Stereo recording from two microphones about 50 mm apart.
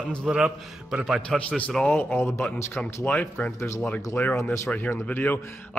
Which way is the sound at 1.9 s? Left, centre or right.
Left.